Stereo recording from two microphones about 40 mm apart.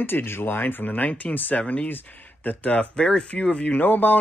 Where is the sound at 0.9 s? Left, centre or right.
Left.